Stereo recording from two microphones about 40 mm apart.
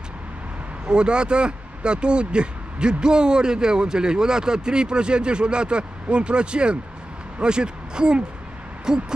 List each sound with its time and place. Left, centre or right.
0.8 s speech: right